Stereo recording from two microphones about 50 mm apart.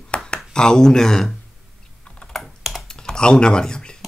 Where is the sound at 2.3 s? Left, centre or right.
Centre.